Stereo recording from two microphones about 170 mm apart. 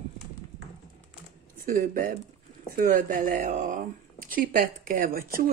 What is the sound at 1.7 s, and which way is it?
Speech, 55° right (ahead or behind).